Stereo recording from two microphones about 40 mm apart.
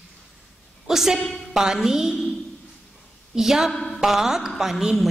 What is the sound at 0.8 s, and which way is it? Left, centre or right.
A woman's voice, centre.